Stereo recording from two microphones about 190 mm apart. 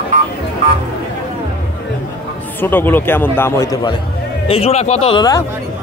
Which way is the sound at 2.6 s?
10° left (ahead or behind).